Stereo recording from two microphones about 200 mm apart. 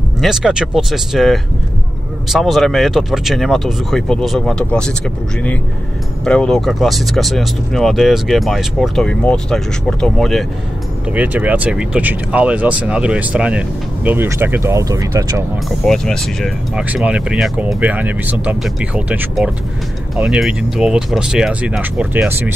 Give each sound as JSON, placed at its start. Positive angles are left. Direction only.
{"t": 0.2, "sound": "speech", "side_deg": 0}
{"t": 6.2, "sound": "speech", "side_deg": 5}
{"t": 15.8, "sound": "speech", "side_deg": 5}